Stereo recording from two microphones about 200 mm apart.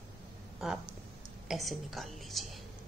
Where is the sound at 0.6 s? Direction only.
Centre (ahead or behind).